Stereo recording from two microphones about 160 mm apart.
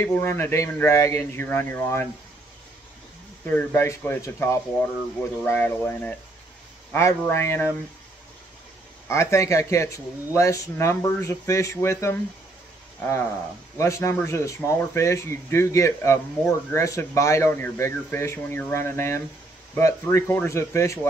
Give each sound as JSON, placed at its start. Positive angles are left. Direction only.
{"t": 0.0, "sound": "speech", "side_deg": 15}
{"t": 3.4, "sound": "speech", "side_deg": 15}
{"t": 9.1, "sound": "speech", "side_deg": 20}
{"t": 13.7, "sound": "speech", "side_deg": 20}